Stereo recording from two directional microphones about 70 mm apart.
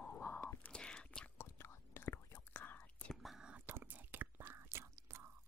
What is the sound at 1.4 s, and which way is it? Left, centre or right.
Whispering, left.